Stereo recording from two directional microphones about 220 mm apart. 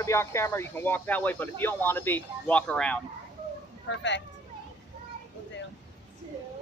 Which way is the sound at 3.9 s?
55° left (ahead or behind).